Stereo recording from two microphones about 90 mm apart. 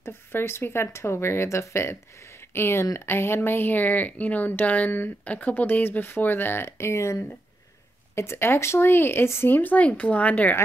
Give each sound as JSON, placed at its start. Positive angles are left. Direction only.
{"t": 0.0, "sound": "speech", "side_deg": 25}